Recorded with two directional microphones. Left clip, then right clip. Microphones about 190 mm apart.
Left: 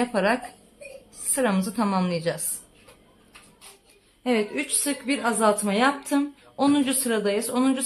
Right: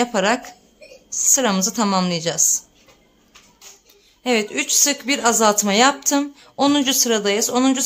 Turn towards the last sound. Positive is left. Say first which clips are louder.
# right 6 dB
turn(degrees=-35)  # may be behind; listen again after turning